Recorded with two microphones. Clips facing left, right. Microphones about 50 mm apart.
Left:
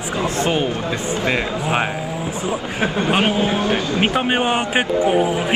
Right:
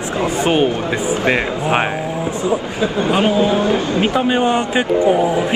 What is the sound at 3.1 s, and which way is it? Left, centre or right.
A man's voice, left.